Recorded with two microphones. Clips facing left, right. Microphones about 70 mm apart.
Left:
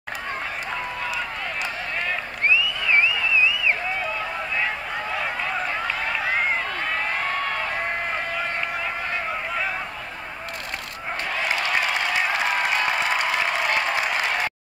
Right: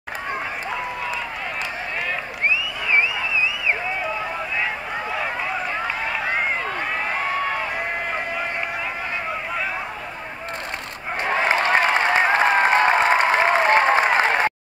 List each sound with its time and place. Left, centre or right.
2.4 s a sound: centre
6.0 s run: centre
11.2 s applause: right